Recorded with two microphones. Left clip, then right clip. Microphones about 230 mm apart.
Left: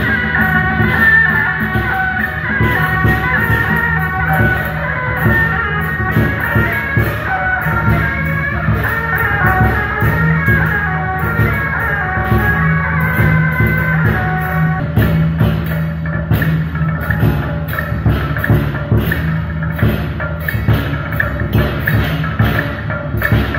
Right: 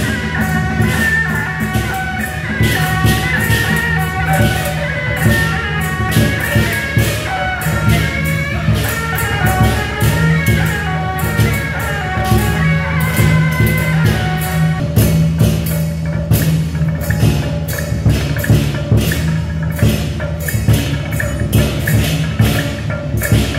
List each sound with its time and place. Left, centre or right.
0.4 s music: right
2.6 s music: right
6.1 s music: right